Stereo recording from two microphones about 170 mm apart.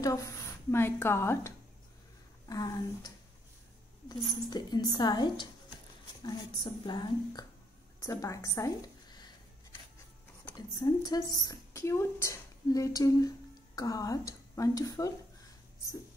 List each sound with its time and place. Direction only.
0.0 s a woman's voice: 20° left (ahead or behind)
4.1 s a woman's voice: 25° left (ahead or behind)
10.5 s speech: 20° left (ahead or behind)